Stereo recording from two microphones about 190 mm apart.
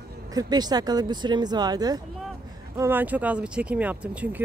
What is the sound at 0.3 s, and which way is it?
Speech, 20° right (ahead or behind).